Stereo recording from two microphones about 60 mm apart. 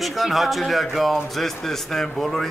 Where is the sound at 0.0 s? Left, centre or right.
Centre.